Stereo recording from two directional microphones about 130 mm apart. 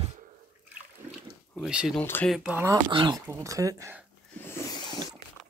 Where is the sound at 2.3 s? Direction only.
5° right (ahead or behind).